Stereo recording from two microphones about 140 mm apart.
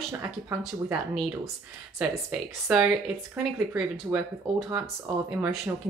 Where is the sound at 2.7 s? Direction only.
5° right (ahead or behind).